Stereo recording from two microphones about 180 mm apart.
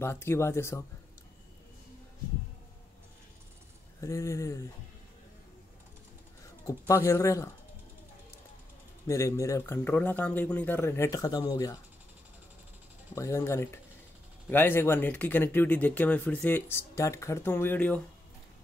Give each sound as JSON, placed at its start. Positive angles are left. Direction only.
{"t": 0.0, "sound": "speech", "side_deg": 15}
{"t": 4.0, "sound": "speech", "side_deg": 15}
{"t": 6.6, "sound": "speech", "side_deg": 15}
{"t": 9.0, "sound": "speech", "side_deg": 15}
{"t": 13.1, "sound": "speech", "side_deg": 15}